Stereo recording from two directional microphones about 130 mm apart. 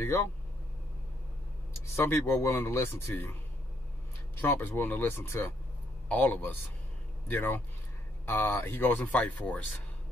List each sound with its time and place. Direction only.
0.0 s speech: 20° left (ahead or behind)
2.0 s speech: 20° left (ahead or behind)
4.4 s speech: 15° left (ahead or behind)